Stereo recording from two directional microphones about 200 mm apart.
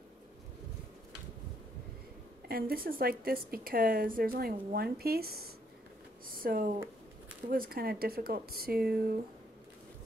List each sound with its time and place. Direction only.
2.7 s a woman's voice: 50° right (ahead or behind)